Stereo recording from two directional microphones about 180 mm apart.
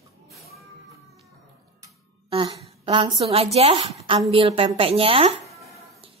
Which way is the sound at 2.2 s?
30° right (ahead or behind).